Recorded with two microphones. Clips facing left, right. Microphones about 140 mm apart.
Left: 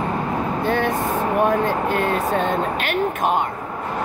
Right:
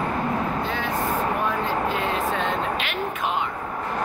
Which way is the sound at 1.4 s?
55° left (ahead or behind).